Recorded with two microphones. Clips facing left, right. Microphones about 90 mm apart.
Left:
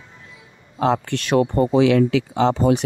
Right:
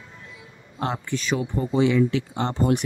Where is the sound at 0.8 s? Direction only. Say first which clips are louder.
Left 6 dB; 90° left.